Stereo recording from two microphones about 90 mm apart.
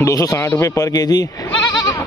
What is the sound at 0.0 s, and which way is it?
Speech, 40° left (ahead or behind).